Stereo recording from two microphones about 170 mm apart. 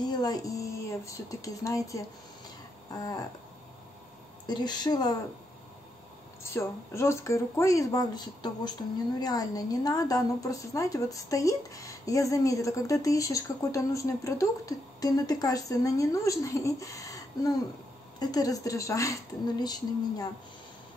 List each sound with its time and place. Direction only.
0.0 s a woman's voice: 25° left (ahead or behind)
4.5 s a woman's voice: 25° left (ahead or behind)
6.4 s a woman's voice: 15° left (ahead or behind)